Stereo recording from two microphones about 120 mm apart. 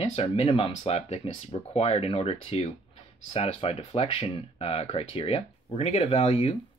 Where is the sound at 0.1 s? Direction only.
55° left (ahead or behind).